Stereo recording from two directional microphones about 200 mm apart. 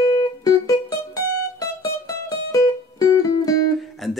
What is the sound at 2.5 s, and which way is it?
Music, 20° left (ahead or behind).